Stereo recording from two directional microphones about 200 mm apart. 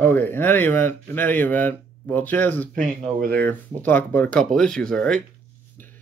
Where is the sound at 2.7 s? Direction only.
40° right (ahead or behind).